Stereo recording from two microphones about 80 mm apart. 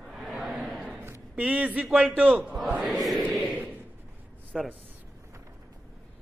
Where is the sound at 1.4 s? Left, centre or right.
Centre.